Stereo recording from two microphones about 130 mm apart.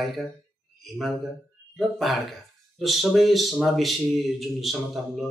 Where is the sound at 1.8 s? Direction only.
Centre (ahead or behind).